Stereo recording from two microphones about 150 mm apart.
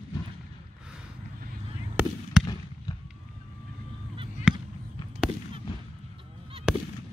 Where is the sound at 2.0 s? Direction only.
10° right (ahead or behind).